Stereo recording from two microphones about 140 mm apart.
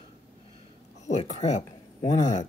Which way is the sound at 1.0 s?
55° left (ahead or behind).